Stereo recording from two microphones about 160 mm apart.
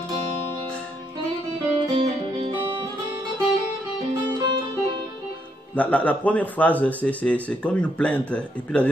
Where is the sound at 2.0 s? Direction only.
35° right (ahead or behind).